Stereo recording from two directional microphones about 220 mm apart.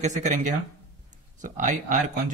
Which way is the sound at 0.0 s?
35° right (ahead or behind).